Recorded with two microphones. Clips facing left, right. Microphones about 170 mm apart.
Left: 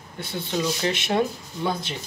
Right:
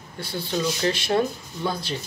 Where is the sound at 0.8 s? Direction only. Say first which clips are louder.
Right 4 dB; 20° left (ahead or behind).